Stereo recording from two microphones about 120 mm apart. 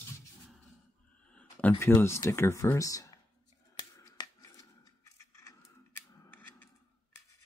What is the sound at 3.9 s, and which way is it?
Finger snapping, 35° left (ahead or behind).